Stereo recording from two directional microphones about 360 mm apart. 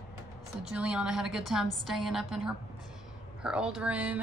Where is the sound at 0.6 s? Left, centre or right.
Centre.